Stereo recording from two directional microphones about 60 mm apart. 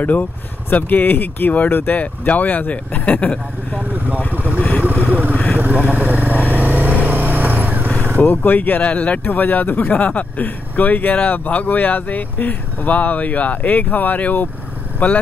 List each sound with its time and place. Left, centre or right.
0.0 s speech: left
5.0 s speech: right
5.3 s speech: left
5.6 s vehicle: right
8.2 s speech: left